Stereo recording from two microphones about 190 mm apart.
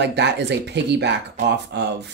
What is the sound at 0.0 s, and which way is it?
Speech, 65° right (ahead or behind).